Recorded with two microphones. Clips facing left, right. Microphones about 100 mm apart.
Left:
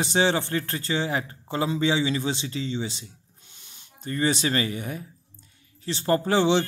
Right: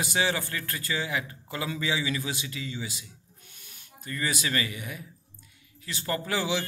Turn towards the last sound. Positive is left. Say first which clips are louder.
# left 8 dB
turn(degrees=30)  # may be behind; listen again after turning